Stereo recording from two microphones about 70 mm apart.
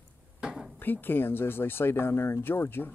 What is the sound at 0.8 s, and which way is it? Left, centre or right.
Speech, left.